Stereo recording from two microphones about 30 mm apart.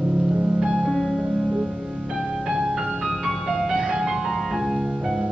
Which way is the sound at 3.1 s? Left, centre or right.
Centre.